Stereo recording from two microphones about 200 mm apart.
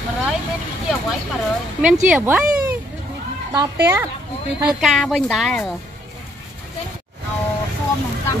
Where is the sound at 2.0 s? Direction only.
10° right (ahead or behind).